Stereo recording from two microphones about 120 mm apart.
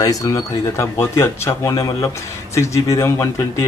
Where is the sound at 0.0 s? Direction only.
25° left (ahead or behind).